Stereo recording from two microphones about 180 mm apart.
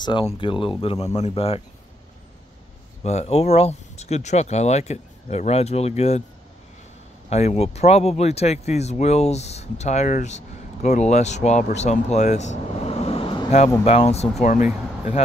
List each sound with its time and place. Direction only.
0.0 s speech: 30° left (ahead or behind)
3.0 s speech: 35° left (ahead or behind)
7.2 s speech: 35° left (ahead or behind)